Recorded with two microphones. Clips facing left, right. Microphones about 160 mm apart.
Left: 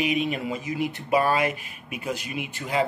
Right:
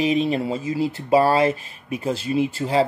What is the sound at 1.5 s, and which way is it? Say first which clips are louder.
Speech: right 7 dB; 15° left (ahead or behind).